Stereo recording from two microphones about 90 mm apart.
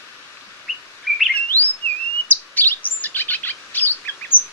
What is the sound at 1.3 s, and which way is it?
Chirp, 20° left (ahead or behind).